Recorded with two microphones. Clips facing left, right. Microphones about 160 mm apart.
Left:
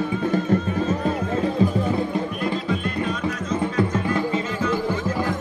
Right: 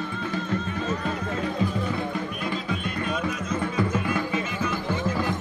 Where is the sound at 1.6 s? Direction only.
35° left (ahead or behind).